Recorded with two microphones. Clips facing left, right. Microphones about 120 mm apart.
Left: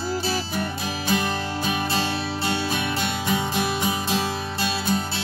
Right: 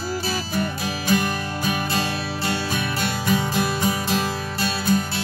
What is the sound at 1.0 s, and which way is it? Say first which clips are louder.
Music: right 2 dB; 25° left (ahead or behind).